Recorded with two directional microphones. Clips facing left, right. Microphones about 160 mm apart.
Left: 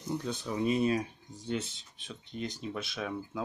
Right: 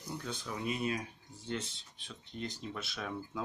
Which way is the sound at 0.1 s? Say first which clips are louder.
Left 7 dB; 25° left (ahead or behind).